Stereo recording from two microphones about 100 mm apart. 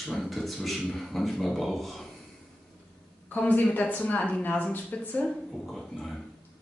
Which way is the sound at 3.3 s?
15° left (ahead or behind).